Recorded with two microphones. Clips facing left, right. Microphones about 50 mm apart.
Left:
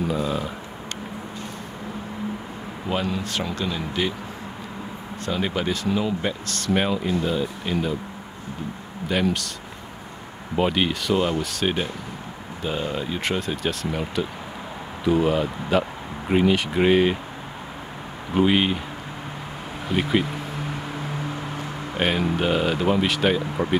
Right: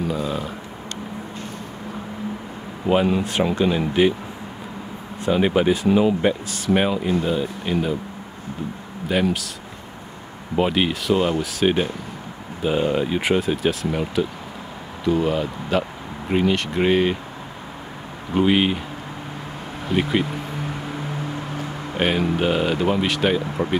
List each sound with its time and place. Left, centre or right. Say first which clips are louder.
0.0 s speech: even; centre
2.9 s speech: right 7 dB; right
5.2 s speech: right 7 dB; centre
9.1 s speech: right 2 dB; centre
10.5 s speech: right 2 dB; centre
18.3 s speech: right 2 dB; centre
19.9 s speech: right 1 dB; centre
21.5 s speech: right 3 dB; centre